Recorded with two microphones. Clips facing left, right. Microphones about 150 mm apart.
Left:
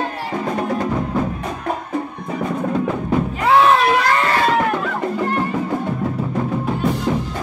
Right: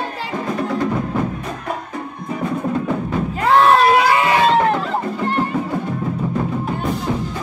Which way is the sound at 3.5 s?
Centre (ahead or behind).